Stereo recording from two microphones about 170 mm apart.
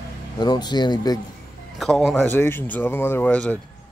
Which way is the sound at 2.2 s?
15° left (ahead or behind).